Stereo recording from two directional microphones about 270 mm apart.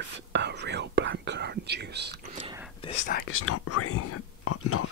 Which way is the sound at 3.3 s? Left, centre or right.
Left.